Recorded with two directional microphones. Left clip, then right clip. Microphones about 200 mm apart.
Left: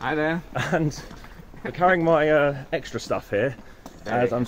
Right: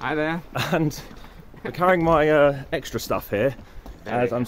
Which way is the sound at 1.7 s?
50° right (ahead or behind).